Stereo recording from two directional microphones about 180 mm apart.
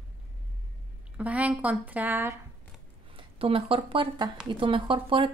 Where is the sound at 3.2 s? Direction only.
30° right (ahead or behind).